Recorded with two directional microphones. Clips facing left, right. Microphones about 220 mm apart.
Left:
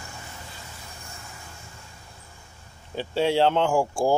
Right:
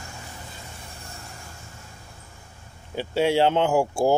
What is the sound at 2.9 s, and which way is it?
Speech, 10° right (ahead or behind).